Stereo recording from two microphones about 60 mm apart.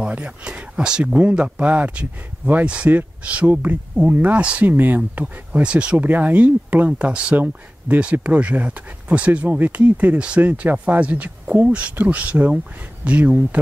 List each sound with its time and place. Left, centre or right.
0.1 s speech: centre
4.6 s speech: right
5.2 s speech: centre
6.0 s speech: right